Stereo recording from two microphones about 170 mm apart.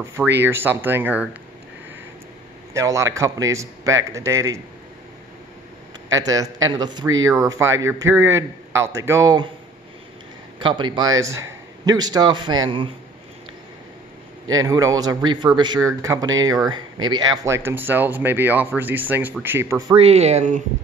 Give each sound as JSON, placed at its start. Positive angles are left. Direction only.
{"t": 0.4, "sound": "a man's voice", "side_deg": -10}
{"t": 2.7, "sound": "a man's voice", "side_deg": -20}
{"t": 6.1, "sound": "a man's voice", "side_deg": -20}
{"t": 10.6, "sound": "speech", "side_deg": -25}
{"t": 14.6, "sound": "a man's voice", "side_deg": -20}
{"t": 19.9, "sound": "speech", "side_deg": -35}